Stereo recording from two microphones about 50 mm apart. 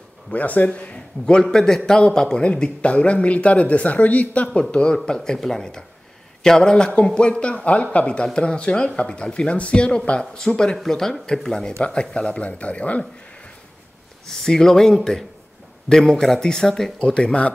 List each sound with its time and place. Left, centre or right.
0.3 s speech: left
14.2 s speech: centre